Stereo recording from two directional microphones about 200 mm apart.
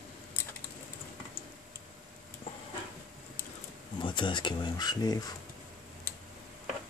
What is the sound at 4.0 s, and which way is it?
Speech, 25° left (ahead or behind).